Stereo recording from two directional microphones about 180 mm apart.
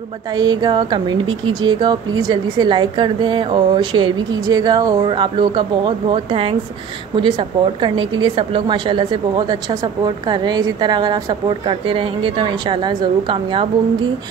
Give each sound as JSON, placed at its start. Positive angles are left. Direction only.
{"t": 0.3, "sound": "a woman's voice", "side_deg": -25}